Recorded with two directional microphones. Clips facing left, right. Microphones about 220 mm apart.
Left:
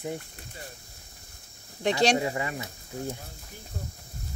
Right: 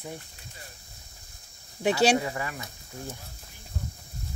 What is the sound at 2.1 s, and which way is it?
Speech, 20° left (ahead or behind).